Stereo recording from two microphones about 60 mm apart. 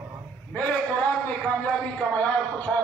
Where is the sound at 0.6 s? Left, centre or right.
Centre.